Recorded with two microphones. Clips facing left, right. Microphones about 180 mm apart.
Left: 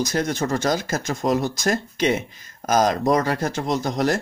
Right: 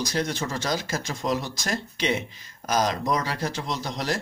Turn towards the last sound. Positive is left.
turn(degrees=45)  # may be behind; listen again after turning